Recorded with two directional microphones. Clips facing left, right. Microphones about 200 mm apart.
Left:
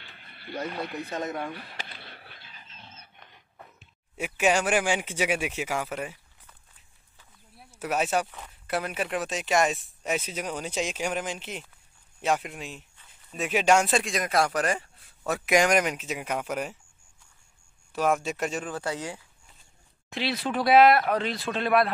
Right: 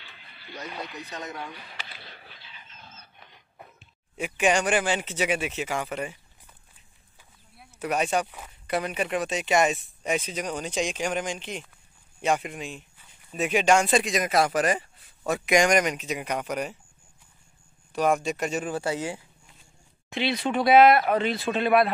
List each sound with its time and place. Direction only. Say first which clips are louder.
0.1 s speech: left 7 dB; 50° left (ahead or behind)
2.0 s a sound: even; 55° left (ahead or behind)
4.2 s speech: right 1 dB; 5° left (ahead or behind)
7.8 s speech: right 1 dB; 5° left (ahead or behind)
17.9 s speech: right 2 dB; centre (ahead or behind)